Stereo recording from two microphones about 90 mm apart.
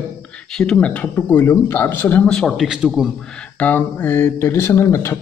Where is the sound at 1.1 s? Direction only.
25° left (ahead or behind).